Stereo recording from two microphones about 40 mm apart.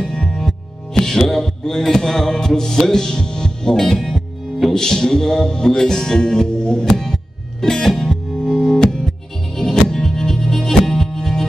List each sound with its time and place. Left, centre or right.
0.0 s music: centre
4.1 s music: centre
4.7 s music: centre
9.5 s music: centre